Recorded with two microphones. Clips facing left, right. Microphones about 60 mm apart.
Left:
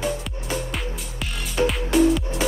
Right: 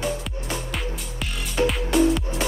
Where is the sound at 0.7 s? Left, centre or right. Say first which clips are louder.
Even; centre.